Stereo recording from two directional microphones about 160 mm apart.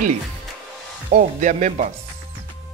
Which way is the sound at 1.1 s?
50° right (ahead or behind).